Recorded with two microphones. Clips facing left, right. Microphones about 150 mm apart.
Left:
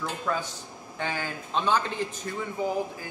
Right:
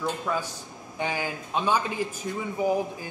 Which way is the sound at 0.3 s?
10° right (ahead or behind).